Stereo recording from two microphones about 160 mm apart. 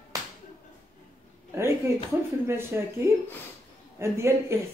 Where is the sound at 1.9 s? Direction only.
15° right (ahead or behind).